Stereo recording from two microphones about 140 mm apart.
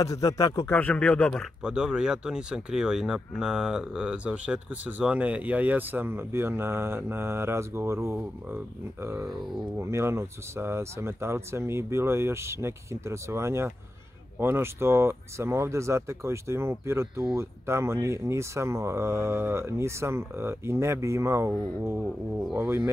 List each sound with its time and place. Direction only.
0.0 s speech: 25° left (ahead or behind)
0.7 s speech: 10° left (ahead or behind)
1.6 s speech: 5° right (ahead or behind)